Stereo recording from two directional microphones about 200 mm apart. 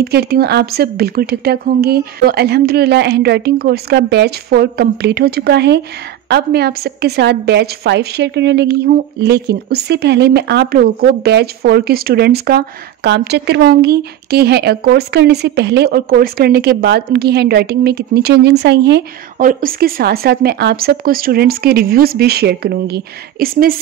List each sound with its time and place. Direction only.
0.0 s a woman's voice: 55° right (ahead or behind)
19.3 s speech: 45° right (ahead or behind)